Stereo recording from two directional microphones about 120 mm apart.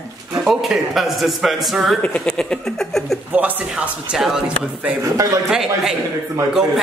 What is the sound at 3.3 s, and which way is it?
Speech, 10° right (ahead or behind).